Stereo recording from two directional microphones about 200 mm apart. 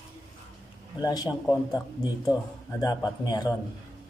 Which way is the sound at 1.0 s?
20° left (ahead or behind).